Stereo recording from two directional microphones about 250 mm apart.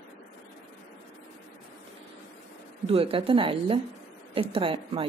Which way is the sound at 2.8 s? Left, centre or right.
Right.